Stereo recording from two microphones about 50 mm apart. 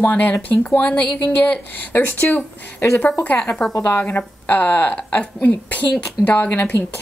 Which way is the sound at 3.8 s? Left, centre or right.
Left.